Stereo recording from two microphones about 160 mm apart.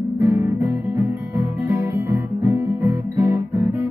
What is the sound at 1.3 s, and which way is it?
Guitar, 15° right (ahead or behind).